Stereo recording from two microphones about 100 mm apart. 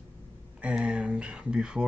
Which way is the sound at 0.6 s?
10° right (ahead or behind).